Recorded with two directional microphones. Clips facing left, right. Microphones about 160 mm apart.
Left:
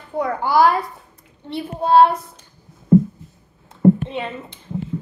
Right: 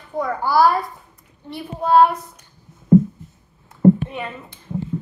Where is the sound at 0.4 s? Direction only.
20° left (ahead or behind).